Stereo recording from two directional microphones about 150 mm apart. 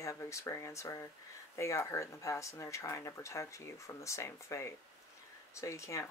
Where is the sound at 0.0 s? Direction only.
20° left (ahead or behind).